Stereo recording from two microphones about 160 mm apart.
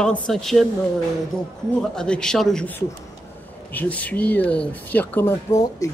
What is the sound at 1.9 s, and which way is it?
Speech, 5° left (ahead or behind).